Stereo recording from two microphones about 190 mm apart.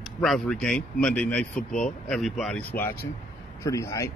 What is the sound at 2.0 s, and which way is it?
A man's voice, centre (ahead or behind).